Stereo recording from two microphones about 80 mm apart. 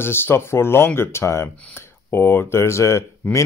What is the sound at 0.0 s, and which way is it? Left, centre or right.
Speech, left.